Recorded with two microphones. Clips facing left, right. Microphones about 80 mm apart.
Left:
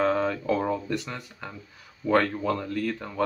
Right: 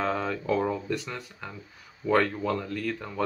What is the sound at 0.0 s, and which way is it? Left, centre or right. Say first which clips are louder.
Speech: left 4 dB; centre.